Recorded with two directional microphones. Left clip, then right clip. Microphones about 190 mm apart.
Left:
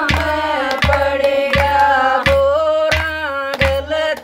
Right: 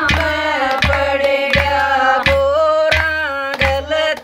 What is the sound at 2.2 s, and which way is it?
Music, 15° left (ahead or behind).